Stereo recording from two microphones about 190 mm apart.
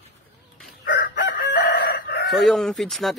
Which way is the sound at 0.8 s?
45° left (ahead or behind).